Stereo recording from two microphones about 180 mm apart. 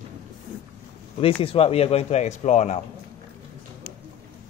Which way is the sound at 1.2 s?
30° left (ahead or behind).